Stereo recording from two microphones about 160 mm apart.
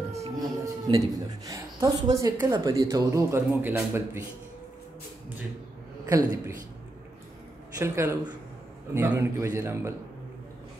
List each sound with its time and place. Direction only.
0.4 s a woman's voice: 25° right (ahead or behind)
6.0 s a man's voice: 20° right (ahead or behind)
7.8 s a man's voice: 15° right (ahead or behind)